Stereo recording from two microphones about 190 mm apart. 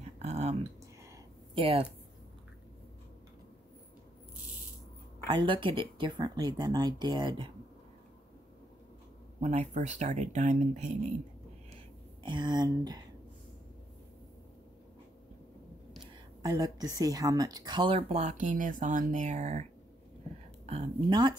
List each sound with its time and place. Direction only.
0.0 s a sound: 35° right (ahead or behind)
1.5 s speech: 30° right (ahead or behind)
5.4 s speech: 25° right (ahead or behind)
9.4 s speech: 35° right (ahead or behind)
12.2 s speech: 25° right (ahead or behind)
16.4 s speech: 20° right (ahead or behind); by 19.6 s 40° right (ahead or behind)
20.6 s speech: 30° right (ahead or behind)